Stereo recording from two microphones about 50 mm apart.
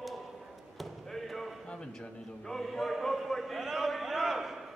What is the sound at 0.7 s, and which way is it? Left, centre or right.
Basketball bounce, centre.